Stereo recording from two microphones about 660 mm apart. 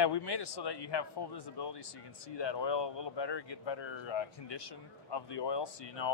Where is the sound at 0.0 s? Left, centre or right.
Left.